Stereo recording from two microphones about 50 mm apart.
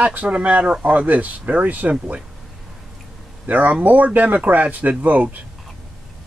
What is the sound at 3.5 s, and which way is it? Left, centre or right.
Speech, right.